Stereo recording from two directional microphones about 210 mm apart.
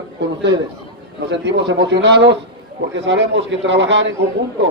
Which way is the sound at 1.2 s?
55° right (ahead or behind).